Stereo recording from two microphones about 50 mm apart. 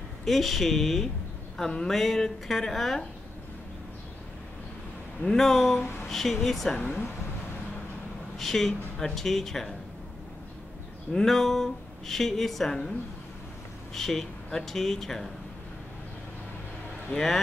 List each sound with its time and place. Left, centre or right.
0.2 s speech: centre
1.6 s speech: centre
1.9 s speech: centre
5.2 s speech: centre
8.4 s speech: centre
11.1 s speech: centre
13.9 s speech: centre